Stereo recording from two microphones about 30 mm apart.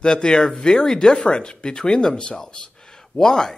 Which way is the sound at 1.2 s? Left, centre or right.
Left.